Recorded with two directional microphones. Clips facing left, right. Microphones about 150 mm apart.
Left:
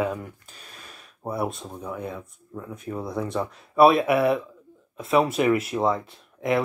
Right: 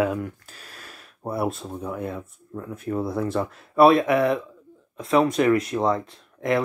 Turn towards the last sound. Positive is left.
turn(degrees=0)  # may be behind; listen again after turning